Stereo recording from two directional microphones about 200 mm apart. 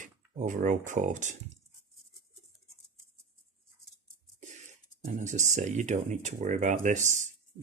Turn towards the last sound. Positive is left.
turn(degrees=-40)  # may be behind; listen again after turning